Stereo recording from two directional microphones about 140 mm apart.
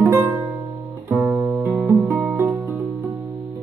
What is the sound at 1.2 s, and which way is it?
Guitar, centre (ahead or behind).